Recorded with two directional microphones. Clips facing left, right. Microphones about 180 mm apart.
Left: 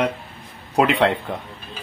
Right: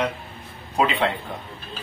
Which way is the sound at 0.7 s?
75° left (ahead or behind).